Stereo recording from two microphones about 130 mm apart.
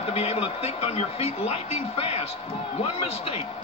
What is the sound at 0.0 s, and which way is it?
Speech, 50° left (ahead or behind).